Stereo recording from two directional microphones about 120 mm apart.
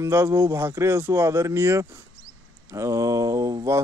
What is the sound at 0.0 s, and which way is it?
Speech, 20° right (ahead or behind).